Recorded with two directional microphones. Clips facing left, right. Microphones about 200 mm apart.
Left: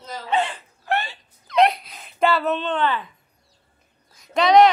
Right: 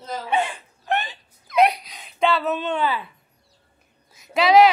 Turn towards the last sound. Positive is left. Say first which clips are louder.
# even
turn(degrees=-5)  # may be behind; listen again after turning